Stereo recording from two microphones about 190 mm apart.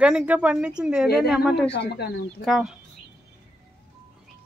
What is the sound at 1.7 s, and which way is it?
Speech, 60° left (ahead or behind).